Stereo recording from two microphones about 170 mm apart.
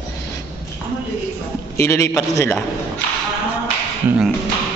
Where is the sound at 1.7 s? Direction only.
15° left (ahead or behind).